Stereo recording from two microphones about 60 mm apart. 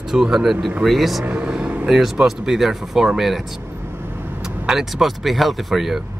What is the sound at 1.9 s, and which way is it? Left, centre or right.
Speech, centre.